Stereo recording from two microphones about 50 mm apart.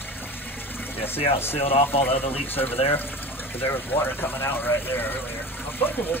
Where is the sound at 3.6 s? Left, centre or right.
Left.